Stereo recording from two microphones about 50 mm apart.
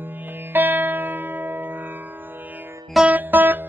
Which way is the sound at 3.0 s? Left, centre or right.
Right.